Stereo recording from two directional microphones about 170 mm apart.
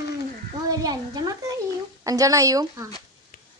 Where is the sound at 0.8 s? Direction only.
20° right (ahead or behind).